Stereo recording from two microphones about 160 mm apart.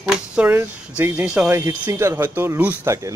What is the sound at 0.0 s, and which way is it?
Speech, 5° right (ahead or behind).